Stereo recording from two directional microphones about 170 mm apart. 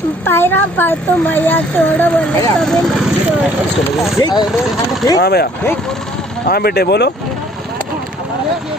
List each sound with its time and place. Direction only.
0.3 s speech: 10° left (ahead or behind)
4.2 s speech: 25° left (ahead or behind)
5.2 s speech: 70° left (ahead or behind)
6.5 s speech: 65° left (ahead or behind)